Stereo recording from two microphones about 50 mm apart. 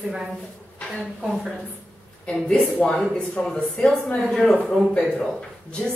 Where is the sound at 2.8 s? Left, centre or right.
Left.